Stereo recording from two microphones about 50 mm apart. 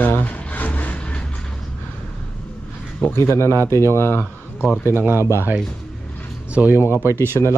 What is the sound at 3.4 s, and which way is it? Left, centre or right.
Speech, right.